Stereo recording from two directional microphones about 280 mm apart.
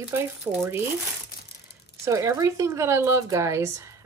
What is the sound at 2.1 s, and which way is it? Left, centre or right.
Speech, centre.